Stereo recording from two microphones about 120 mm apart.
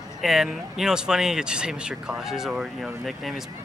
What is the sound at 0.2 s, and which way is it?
Speech, centre (ahead or behind).